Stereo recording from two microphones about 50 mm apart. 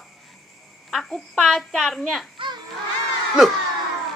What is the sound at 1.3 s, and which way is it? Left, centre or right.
Speech, centre.